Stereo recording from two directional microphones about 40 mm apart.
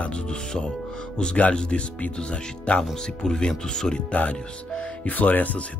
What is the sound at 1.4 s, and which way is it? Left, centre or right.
Speech, left.